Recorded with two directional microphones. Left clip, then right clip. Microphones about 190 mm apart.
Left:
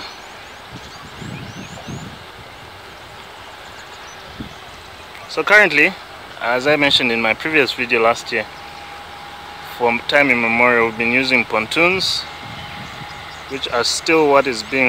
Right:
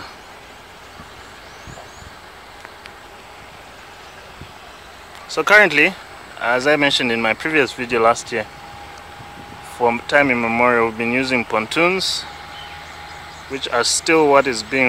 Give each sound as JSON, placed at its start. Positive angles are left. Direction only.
{"t": 5.3, "sound": "speech", "side_deg": -10}
{"t": 9.8, "sound": "speech", "side_deg": -10}
{"t": 13.5, "sound": "speech", "side_deg": -5}